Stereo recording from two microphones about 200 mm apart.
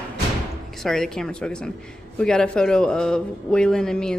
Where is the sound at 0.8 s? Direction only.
Centre (ahead or behind).